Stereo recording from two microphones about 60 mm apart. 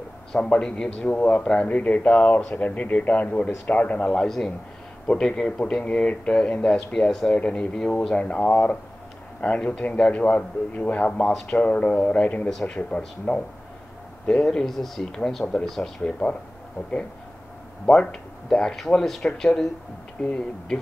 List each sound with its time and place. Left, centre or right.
0.3 s a man's voice: centre
1.7 s a man's voice: left; by 15.9 s centre
16.0 s a man's voice: centre
17.8 s a man's voice: centre